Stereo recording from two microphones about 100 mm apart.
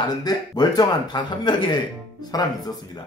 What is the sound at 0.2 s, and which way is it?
Speech, 40° left (ahead or behind).